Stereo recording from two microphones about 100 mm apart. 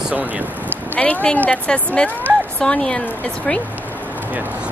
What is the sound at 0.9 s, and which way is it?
Speech, 15° left (ahead or behind).